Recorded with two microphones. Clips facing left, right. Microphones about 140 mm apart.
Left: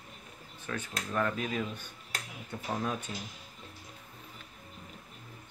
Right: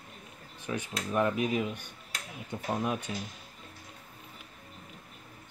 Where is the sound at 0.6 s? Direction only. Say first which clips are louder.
Right 3 dB; 15° right (ahead or behind).